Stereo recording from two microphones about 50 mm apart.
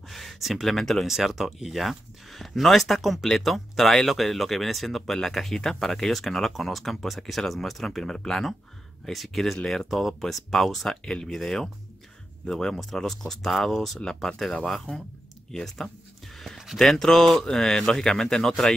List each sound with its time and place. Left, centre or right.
0.1 s speech: centre
11.1 s speech: centre
15.6 s a sound: centre
16.7 s speech: centre